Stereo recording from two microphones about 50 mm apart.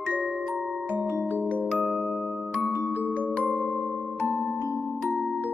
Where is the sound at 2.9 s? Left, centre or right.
Right.